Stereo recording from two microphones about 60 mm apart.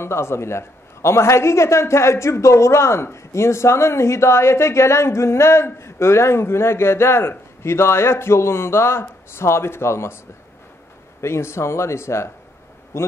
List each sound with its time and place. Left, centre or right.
0.0 s a man's voice: left
11.1 s a man's voice: left